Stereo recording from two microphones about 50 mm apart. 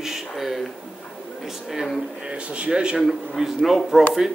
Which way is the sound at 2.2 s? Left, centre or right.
Right.